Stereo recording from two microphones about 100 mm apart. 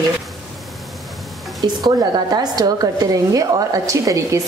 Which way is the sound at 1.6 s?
40° right (ahead or behind).